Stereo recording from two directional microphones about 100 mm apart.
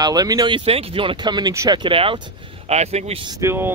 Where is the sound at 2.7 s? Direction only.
90° right.